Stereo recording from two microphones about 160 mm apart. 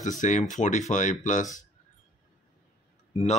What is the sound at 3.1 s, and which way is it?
Speech, 40° left (ahead or behind).